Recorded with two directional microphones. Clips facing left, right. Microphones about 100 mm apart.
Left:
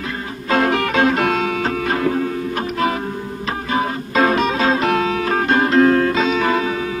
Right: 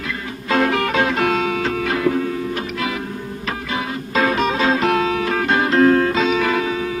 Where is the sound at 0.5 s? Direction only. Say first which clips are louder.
Left 1 dB; 35° left (ahead or behind).